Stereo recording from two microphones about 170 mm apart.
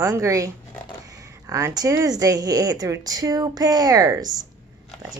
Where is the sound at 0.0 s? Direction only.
15° right (ahead or behind).